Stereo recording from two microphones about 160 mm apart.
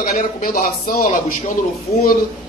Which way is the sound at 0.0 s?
55° left (ahead or behind).